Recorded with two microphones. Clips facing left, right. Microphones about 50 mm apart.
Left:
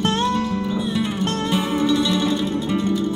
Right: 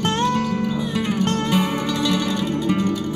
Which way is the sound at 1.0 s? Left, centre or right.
Right.